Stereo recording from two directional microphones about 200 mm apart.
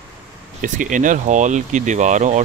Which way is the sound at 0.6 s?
40° right (ahead or behind).